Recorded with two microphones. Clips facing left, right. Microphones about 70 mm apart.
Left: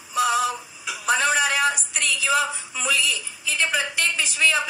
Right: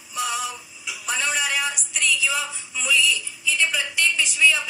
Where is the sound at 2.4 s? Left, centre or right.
Left.